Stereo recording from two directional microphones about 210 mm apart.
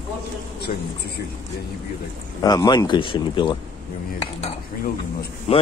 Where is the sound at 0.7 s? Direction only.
40° left (ahead or behind).